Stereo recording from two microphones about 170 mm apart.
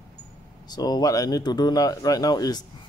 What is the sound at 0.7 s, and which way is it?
Speech, 25° left (ahead or behind).